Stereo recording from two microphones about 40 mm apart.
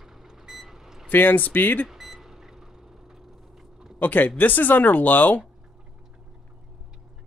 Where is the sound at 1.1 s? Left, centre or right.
Left.